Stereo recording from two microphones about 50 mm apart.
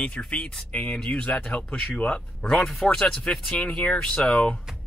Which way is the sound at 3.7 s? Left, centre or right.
Centre.